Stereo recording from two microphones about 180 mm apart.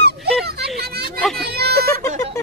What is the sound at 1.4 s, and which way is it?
Speech, 60° right (ahead or behind).